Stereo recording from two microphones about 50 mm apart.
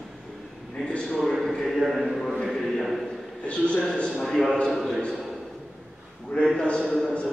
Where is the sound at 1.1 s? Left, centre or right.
Centre.